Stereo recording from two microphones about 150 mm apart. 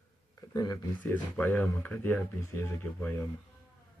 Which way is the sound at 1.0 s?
10° left (ahead or behind).